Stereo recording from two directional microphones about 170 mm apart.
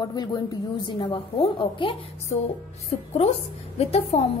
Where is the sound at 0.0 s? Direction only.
25° left (ahead or behind).